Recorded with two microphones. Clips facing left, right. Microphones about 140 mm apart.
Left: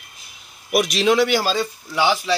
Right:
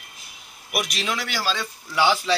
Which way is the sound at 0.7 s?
90° left.